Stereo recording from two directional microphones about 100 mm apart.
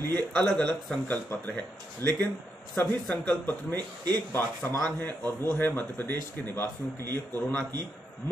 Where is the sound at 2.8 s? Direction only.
15° left (ahead or behind).